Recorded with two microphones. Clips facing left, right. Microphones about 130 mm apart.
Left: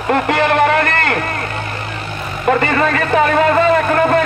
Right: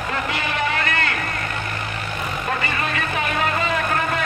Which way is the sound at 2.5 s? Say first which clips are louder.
Left 13 dB; 65° left (ahead or behind).